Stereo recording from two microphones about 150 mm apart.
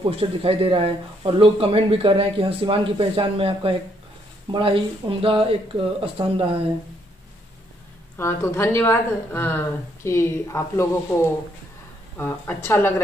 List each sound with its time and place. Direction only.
0.4 s speech: 40° right (ahead or behind)
8.2 s speech: 15° left (ahead or behind)